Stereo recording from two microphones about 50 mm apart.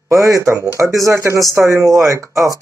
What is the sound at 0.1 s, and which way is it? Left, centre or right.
Speech, right.